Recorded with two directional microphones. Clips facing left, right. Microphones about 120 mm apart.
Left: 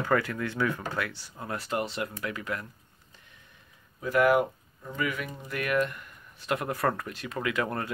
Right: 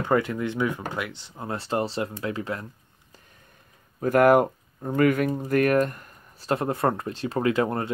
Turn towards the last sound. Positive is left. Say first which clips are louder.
# right 7 dB
turn(degrees=-25)  # may be behind; listen again after turning